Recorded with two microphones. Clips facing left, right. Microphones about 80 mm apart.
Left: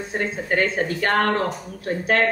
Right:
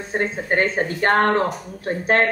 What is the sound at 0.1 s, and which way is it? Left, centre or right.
Speech, right.